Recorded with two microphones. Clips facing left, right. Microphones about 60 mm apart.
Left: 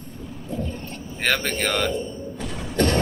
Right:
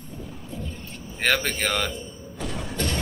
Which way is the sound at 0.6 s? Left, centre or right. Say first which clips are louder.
Left 6 dB; left.